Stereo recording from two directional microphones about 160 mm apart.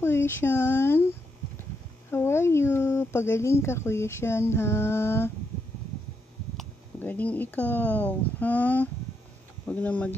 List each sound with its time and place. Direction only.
0.0 s speech: 15° left (ahead or behind)
2.0 s speech: 15° left (ahead or behind)
7.0 s speech: 10° left (ahead or behind)